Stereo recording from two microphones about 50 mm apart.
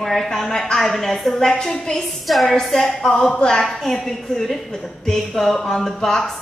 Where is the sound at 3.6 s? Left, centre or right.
Centre.